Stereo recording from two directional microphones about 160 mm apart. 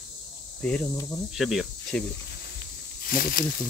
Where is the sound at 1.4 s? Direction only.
Centre (ahead or behind).